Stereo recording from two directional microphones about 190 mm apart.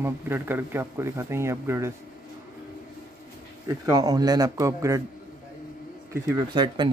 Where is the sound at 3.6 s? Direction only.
20° right (ahead or behind).